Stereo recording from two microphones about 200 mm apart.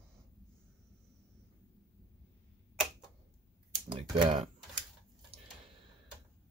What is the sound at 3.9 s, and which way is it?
Typing, 25° right (ahead or behind).